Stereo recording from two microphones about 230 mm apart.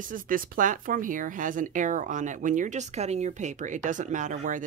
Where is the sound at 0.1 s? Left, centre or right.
Right.